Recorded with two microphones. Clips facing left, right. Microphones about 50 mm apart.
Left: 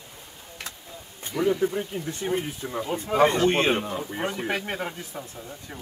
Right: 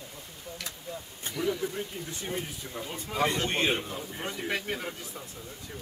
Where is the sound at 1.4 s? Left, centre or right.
Left.